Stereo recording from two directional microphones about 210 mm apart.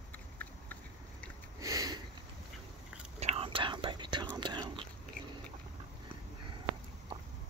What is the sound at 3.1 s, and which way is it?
Whispering, 30° right (ahead or behind).